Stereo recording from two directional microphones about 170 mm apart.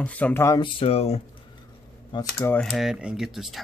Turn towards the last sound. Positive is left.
turn(degrees=0)  # may be behind; listen again after turning